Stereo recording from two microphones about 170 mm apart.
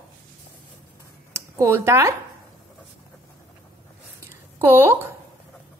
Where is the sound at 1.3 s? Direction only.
15° right (ahead or behind).